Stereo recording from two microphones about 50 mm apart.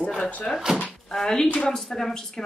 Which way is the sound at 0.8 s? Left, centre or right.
Centre.